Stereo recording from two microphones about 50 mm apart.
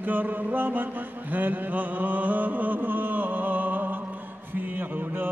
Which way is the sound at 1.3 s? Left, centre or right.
Right.